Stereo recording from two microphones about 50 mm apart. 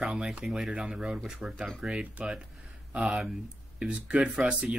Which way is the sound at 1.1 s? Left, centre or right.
Centre.